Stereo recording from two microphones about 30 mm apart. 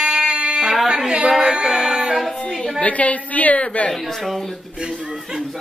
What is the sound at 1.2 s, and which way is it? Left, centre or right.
Music, right.